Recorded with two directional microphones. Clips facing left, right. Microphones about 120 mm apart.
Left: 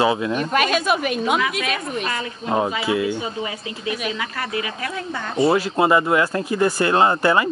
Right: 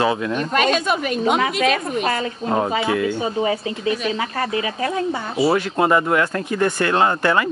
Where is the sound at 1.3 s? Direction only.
35° right (ahead or behind).